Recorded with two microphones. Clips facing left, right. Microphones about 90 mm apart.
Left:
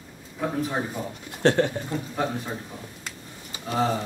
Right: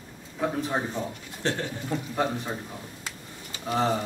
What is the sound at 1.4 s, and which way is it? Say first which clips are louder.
Speech: left 9 dB; 65° left (ahead or behind).